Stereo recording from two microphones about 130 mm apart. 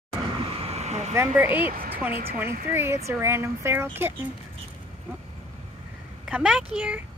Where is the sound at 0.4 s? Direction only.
50° right (ahead or behind).